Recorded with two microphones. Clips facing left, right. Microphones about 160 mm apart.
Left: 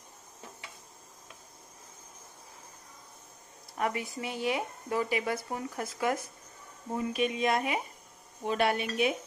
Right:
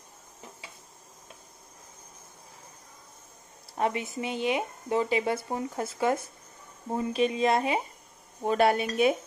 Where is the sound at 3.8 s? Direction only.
25° right (ahead or behind).